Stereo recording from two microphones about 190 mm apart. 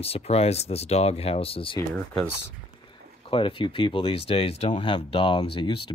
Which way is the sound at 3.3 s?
30° left (ahead or behind).